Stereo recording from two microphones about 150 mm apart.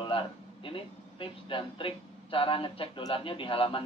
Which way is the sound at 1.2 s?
35° left (ahead or behind).